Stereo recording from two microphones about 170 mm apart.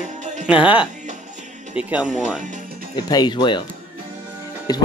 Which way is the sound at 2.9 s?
25° left (ahead or behind).